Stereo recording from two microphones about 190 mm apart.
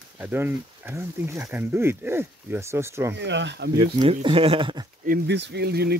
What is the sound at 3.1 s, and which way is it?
Speech, 70° right (ahead or behind).